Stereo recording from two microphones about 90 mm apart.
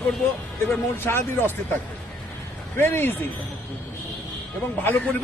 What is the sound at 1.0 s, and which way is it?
Speech, 25° left (ahead or behind).